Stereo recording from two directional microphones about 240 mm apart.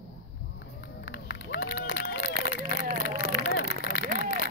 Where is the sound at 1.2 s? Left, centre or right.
Left.